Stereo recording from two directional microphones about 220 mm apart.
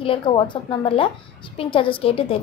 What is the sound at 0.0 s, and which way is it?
A woman's voice, 25° left (ahead or behind).